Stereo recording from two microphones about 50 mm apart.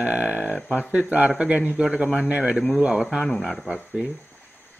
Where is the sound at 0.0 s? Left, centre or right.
Right.